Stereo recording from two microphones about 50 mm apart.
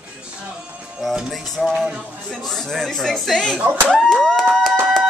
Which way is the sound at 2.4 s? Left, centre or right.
Centre.